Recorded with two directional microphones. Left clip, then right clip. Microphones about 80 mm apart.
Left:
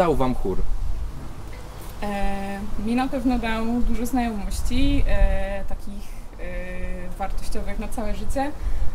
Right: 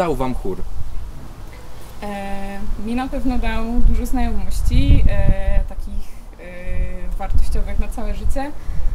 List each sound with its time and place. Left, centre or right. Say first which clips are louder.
0.0 s speech: even; right
2.0 s a woman's voice: even; centre